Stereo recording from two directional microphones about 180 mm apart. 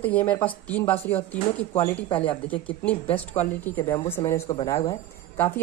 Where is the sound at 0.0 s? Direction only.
10° left (ahead or behind).